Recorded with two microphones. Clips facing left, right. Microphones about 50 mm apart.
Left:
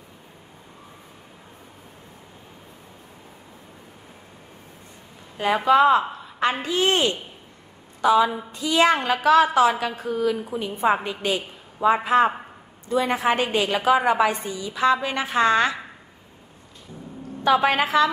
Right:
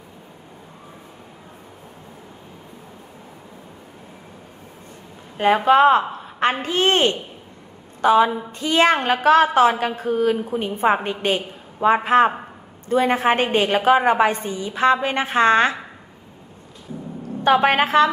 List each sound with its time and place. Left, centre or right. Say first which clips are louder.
5.4 s a woman's voice: right 3 dB; right
17.4 s a woman's voice: right 3 dB; right